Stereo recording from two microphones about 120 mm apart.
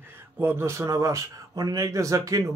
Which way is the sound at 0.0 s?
20° right (ahead or behind).